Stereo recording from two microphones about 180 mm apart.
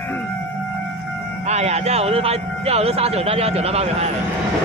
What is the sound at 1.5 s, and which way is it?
Speech, 35° right (ahead or behind).